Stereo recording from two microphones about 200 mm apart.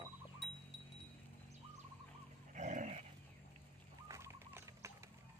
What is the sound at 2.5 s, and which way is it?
Dog, 40° right (ahead or behind).